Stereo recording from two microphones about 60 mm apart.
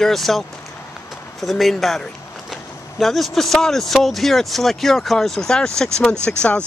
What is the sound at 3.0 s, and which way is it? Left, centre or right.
Speech, centre.